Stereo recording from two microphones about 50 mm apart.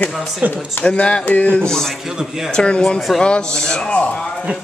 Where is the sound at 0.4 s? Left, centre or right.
Right.